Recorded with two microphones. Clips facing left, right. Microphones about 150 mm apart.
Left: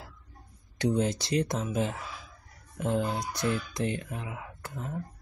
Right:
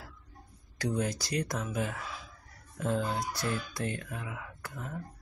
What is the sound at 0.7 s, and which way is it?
Speech, 20° left (ahead or behind).